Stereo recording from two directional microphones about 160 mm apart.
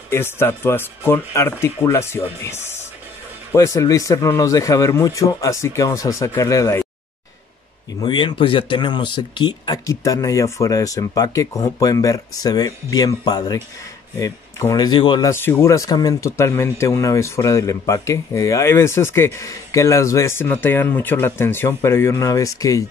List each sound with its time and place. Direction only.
0.1 s speech: 15° left (ahead or behind)
8.0 s speech: 30° left (ahead or behind)
15.3 s speech: 15° left (ahead or behind)